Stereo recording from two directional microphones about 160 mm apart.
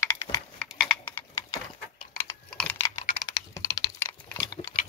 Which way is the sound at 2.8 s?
20° left (ahead or behind).